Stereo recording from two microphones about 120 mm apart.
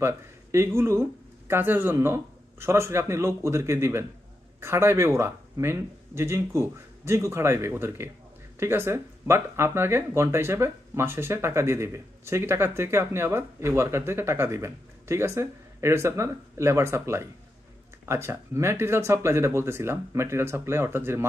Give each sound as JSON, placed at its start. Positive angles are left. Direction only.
{"t": 0.0, "sound": "speech", "side_deg": -20}